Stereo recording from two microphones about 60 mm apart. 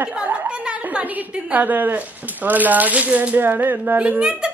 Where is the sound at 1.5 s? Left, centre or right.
Right.